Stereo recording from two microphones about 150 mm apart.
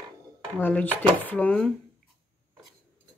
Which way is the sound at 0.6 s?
10° left (ahead or behind).